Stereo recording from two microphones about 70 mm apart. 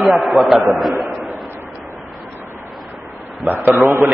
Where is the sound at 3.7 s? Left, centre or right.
Right.